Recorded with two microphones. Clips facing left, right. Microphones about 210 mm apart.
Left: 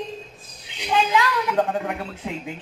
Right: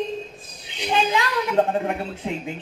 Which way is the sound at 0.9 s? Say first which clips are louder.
Left 1 dB; 25° right (ahead or behind).